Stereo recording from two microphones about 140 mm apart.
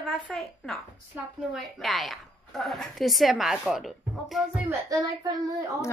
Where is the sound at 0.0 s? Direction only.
Centre (ahead or behind).